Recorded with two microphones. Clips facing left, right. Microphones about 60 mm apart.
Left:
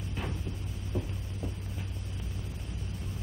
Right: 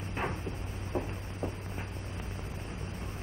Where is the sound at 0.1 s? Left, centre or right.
Right.